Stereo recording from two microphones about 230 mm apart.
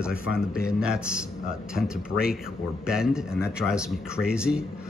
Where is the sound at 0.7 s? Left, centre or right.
Centre.